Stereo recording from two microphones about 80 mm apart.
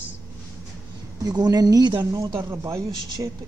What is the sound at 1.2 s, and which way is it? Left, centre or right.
Speech, right.